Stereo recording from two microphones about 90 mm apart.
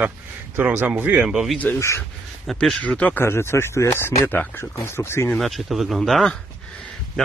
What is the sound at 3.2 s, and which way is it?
Speech, 30° left (ahead or behind).